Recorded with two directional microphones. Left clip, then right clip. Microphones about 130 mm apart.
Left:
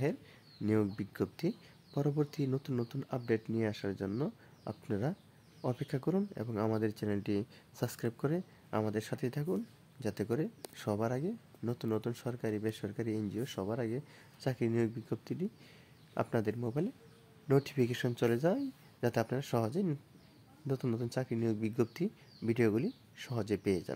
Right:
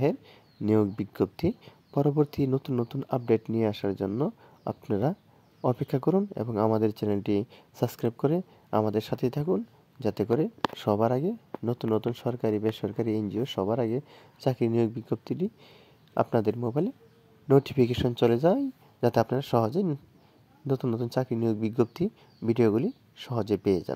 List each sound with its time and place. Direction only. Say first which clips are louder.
0.0 s speech: right 9 dB; 45° right (ahead or behind)